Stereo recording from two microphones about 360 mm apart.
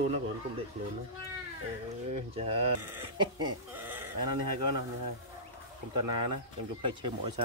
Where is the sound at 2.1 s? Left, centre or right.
Centre.